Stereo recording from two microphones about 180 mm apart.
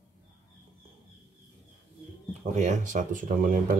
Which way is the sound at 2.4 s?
40° right (ahead or behind).